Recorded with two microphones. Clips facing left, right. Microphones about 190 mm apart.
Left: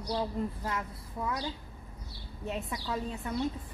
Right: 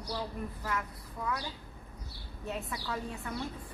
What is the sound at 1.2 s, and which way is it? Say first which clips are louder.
Speech: left 1 dB; 25° left (ahead or behind).